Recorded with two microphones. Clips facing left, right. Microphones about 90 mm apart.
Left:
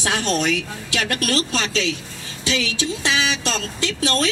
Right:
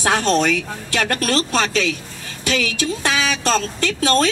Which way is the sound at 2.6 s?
25° left (ahead or behind).